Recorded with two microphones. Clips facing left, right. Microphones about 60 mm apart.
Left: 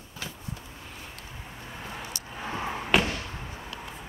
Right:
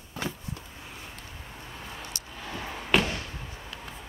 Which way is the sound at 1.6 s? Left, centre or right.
Centre.